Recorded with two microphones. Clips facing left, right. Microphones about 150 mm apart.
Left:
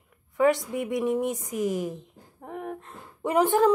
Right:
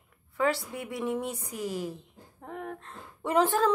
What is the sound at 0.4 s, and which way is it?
A woman's voice, 20° left (ahead or behind).